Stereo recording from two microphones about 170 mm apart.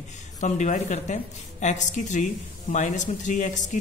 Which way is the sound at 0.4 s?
45° left (ahead or behind).